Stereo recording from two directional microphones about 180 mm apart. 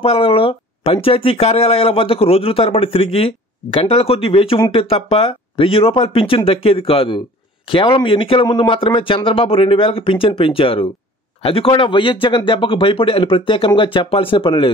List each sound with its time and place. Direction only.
0.0 s speech: 30° left (ahead or behind)